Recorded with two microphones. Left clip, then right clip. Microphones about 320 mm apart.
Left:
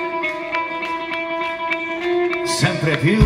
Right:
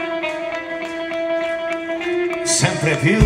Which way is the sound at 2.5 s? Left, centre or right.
Right.